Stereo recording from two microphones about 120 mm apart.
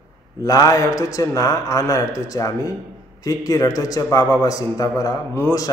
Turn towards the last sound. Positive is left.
turn(degrees=30)  # may be behind; listen again after turning